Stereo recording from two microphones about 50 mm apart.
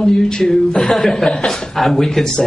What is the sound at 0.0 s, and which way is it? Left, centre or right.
A woman's voice, centre.